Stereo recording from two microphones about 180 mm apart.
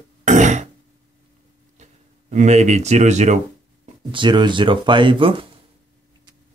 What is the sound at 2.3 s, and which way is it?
Speech, 40° right (ahead or behind).